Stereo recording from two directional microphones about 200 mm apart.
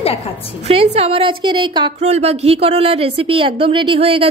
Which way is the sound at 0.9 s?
30° right (ahead or behind).